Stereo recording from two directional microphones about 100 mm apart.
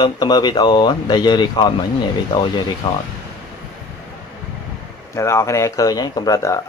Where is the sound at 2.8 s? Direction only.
65° left (ahead or behind).